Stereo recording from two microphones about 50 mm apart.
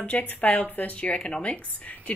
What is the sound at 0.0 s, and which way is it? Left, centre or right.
Speech, left.